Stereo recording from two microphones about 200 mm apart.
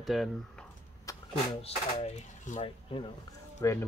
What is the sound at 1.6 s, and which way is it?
Speech, 35° left (ahead or behind).